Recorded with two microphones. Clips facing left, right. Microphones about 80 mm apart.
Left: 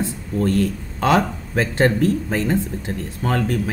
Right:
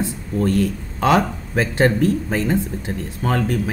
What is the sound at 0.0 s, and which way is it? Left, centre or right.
Speech, centre.